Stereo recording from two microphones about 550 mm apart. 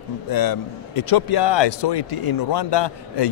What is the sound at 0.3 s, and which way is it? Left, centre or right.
A man's voice, left.